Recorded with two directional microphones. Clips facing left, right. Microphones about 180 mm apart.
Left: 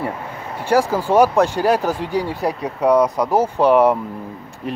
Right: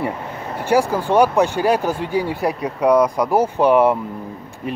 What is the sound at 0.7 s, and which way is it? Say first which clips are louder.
Speech: even; centre (ahead or behind).